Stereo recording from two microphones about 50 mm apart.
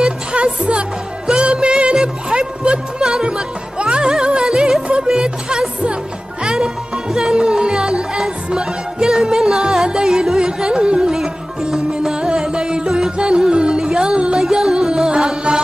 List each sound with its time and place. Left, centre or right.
0.0 s music: centre